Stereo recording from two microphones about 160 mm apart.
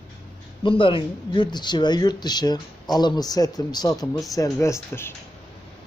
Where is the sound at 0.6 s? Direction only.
30° left (ahead or behind); by 5.1 s 15° left (ahead or behind).